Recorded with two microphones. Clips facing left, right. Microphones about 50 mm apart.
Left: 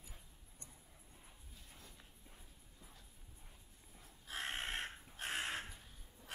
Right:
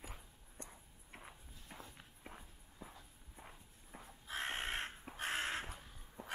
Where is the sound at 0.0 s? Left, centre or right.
Right.